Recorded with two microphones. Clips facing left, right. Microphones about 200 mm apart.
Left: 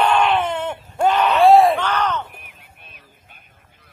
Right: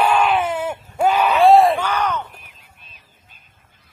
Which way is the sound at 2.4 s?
60° left (ahead or behind).